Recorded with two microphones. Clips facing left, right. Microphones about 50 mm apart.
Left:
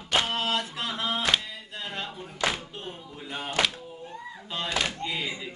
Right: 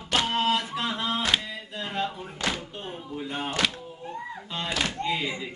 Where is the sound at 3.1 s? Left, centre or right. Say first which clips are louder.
Right 5 dB; right.